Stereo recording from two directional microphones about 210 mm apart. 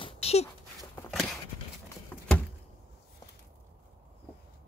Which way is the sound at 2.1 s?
10° left (ahead or behind).